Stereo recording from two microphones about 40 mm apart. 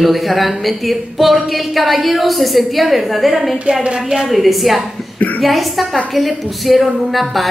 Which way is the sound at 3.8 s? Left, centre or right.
Right.